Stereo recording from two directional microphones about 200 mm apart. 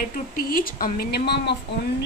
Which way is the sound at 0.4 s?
45° left (ahead or behind).